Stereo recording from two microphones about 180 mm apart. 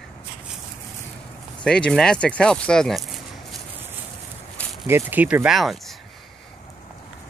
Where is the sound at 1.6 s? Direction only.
5° left (ahead or behind).